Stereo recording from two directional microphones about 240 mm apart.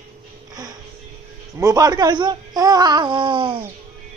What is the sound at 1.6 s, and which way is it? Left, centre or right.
Speech, centre.